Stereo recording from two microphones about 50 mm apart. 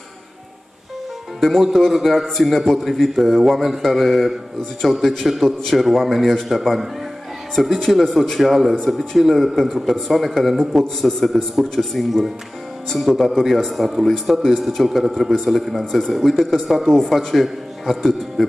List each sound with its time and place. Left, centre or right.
1.4 s a man's voice: centre